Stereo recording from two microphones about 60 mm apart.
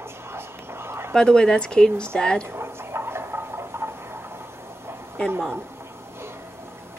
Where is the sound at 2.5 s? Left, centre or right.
Right.